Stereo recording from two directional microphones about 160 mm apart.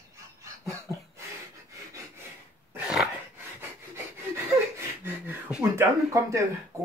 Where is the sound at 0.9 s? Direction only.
20° left (ahead or behind).